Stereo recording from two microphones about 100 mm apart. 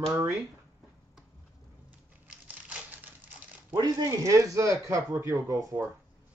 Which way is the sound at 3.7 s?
40° right (ahead or behind).